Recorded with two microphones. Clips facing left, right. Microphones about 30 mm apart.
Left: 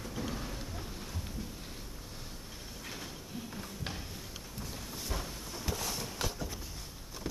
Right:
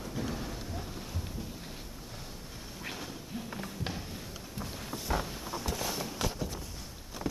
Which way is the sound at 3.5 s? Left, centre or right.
Centre.